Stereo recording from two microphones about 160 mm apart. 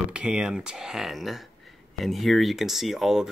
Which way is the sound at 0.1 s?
5° right (ahead or behind).